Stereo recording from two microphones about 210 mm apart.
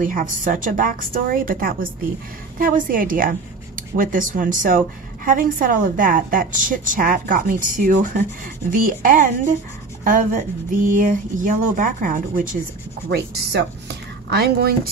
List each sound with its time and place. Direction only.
0.0 s a woman's voice: 40° right (ahead or behind)
13.1 s a woman's voice: 55° right (ahead or behind)